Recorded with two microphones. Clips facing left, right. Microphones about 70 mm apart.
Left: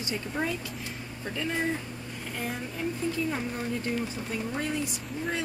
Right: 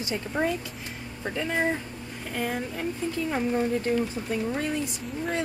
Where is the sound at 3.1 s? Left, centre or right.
Right.